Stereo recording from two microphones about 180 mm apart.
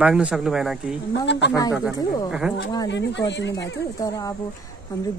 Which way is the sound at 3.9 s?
20° left (ahead or behind).